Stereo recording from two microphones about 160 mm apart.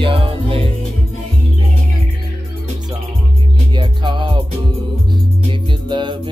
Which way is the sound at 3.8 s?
30° right (ahead or behind).